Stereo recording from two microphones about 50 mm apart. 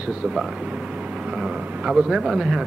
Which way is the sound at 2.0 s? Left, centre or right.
Centre.